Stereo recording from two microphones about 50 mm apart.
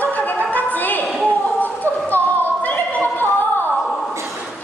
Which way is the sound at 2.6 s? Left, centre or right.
Left.